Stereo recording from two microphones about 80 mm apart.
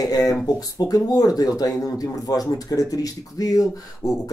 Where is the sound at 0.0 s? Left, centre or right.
Left.